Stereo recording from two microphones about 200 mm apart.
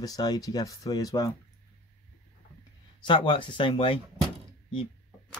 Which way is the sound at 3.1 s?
25° left (ahead or behind).